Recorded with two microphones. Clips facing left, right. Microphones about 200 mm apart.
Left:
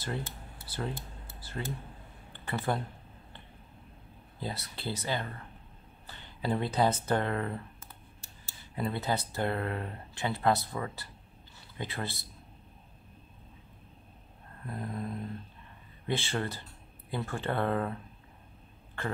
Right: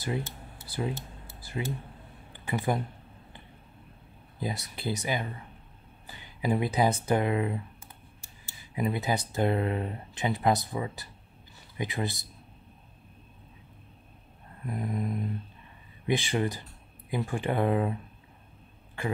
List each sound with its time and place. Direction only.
0.7 s speech: 10° right (ahead or behind)
1.4 s a sound: 10° right (ahead or behind)
2.3 s speech: 10° right (ahead or behind)
4.4 s speech: 15° right (ahead or behind)
8.7 s speech: 15° right (ahead or behind)
14.7 s speech: 15° right (ahead or behind)